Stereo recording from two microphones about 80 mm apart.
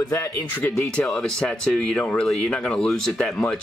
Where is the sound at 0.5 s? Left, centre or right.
Centre.